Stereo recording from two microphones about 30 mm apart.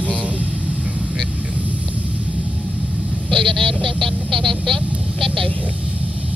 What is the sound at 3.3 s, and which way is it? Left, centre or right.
Speech, centre.